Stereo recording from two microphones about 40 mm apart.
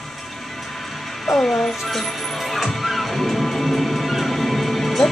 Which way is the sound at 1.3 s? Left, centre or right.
Centre.